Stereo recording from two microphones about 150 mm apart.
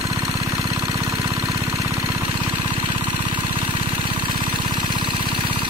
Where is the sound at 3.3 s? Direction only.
35° right (ahead or behind).